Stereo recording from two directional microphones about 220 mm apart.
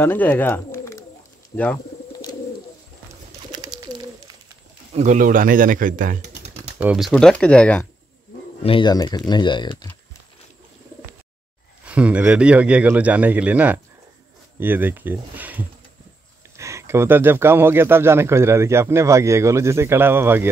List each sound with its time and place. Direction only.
0.0 s speech: 10° left (ahead or behind)
3.5 s bird: 20° right (ahead or behind)
4.9 s speech: 35° right (ahead or behind)
6.8 s speech: 5° right (ahead or behind)
8.6 s speech: 20° left (ahead or behind)
11.8 s a man's voice: 5° right (ahead or behind)